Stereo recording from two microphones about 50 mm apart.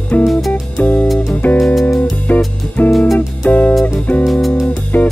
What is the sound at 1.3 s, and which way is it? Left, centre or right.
Music, left.